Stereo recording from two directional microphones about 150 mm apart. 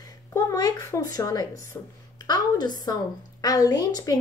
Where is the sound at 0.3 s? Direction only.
20° left (ahead or behind).